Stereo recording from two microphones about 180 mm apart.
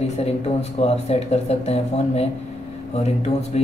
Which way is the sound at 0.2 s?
35° left (ahead or behind).